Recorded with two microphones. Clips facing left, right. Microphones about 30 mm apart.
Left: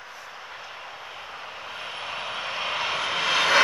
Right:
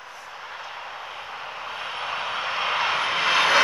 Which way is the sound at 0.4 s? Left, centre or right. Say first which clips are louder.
Right 6 dB; centre.